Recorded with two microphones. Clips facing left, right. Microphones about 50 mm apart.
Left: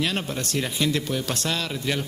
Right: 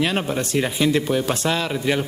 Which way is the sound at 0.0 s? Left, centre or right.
Centre.